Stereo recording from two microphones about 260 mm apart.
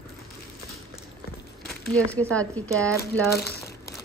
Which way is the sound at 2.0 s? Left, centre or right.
Centre.